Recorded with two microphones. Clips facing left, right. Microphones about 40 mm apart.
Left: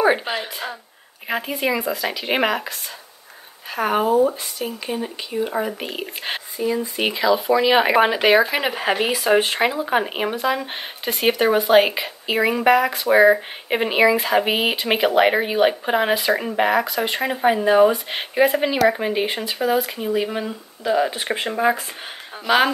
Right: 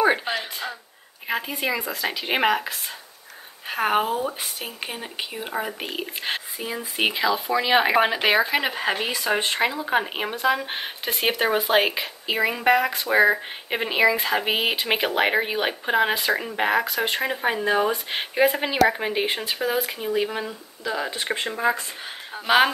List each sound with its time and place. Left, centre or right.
0.0 s a sound: centre
1.2 s speech: centre
3.7 s speech: centre
4.3 s speech: right
4.8 s speech: centre
5.5 s speech: centre
6.6 s speech: centre
20.4 s speech: centre
22.5 s speech: right